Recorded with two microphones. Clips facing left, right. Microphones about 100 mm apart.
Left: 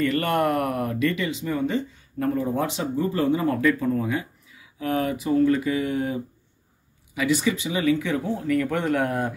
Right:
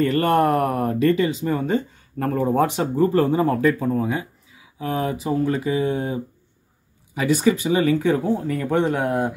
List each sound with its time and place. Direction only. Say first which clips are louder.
0.0 s speech: right 4 dB; 35° right (ahead or behind)
7.2 s speech: right 4 dB; 40° right (ahead or behind); by 9.3 s 20° right (ahead or behind)